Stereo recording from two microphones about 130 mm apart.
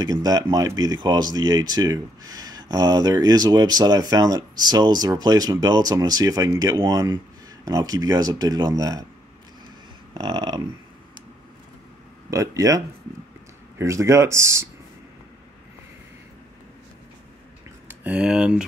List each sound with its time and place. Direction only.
0.0 s speech: 30° right (ahead or behind)
10.1 s a sound: 35° right (ahead or behind)
12.3 s speech: 25° right (ahead or behind)
17.8 s speech: 10° right (ahead or behind)